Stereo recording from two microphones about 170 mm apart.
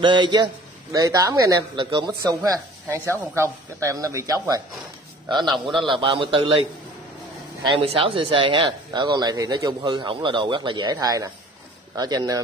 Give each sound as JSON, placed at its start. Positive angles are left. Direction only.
{"t": 0.0, "sound": "speech", "side_deg": -30}
{"t": 5.5, "sound": "a man's voice", "side_deg": 0}
{"t": 5.9, "sound": "a man's voice", "side_deg": -30}
{"t": 7.7, "sound": "speech", "side_deg": -30}